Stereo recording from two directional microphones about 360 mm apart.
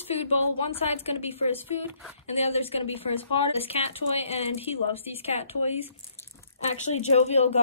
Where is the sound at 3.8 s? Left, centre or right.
Centre.